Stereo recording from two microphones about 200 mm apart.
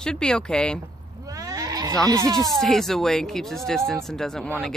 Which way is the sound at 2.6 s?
Centre (ahead or behind).